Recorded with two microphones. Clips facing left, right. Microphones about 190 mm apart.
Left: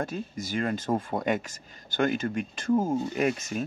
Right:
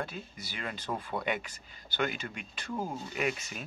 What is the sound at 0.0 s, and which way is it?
Speech, 45° left (ahead or behind).